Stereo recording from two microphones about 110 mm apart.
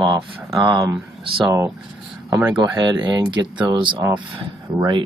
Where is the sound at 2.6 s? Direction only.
40° right (ahead or behind).